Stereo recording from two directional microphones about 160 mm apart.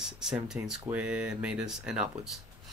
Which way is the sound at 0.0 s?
5° right (ahead or behind).